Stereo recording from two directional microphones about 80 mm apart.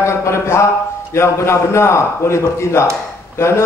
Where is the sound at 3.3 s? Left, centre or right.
Left.